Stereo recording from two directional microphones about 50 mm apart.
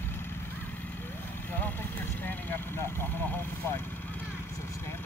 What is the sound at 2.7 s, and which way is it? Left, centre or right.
Vehicle, left.